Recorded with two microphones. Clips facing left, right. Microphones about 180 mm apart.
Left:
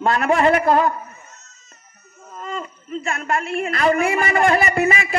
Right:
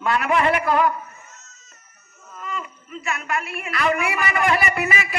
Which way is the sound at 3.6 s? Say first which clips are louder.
Left 4 dB; 45° left (ahead or behind).